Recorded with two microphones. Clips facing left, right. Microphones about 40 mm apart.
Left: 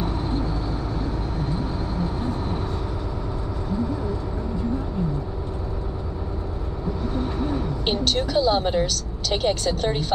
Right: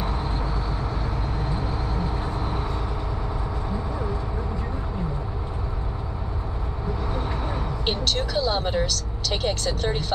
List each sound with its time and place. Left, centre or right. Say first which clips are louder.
0.0 s vehicle: left 2 dB; centre
7.3 s vehicle: left 4 dB; centre
7.8 s vehicle: left 2 dB; centre